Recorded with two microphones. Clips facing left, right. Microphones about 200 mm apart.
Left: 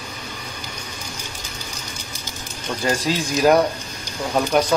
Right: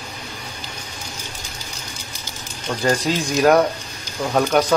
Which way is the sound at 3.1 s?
Centre (ahead or behind).